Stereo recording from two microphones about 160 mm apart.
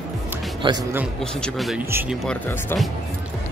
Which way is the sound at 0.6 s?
30° right (ahead or behind).